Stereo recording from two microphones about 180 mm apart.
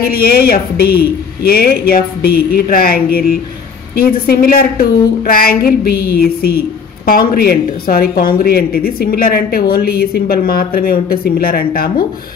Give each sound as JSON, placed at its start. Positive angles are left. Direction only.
{"t": 0.1, "sound": "a woman's voice", "side_deg": 55}